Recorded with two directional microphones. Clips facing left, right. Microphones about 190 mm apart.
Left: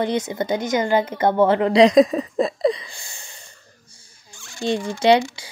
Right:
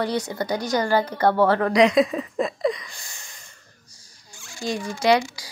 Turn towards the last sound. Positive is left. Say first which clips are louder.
# left 3 dB
turn(degrees=25)  # may be behind; listen again after turning